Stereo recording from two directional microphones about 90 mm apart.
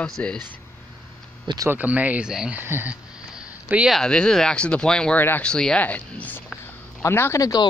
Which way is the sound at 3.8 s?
5° left (ahead or behind).